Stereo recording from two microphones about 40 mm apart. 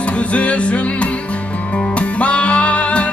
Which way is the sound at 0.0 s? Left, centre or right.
Left.